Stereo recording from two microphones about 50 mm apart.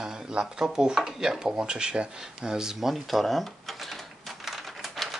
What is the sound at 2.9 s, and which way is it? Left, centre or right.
Typewriter, centre.